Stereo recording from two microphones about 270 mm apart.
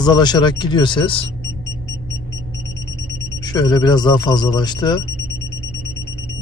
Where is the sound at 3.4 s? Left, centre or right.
Centre.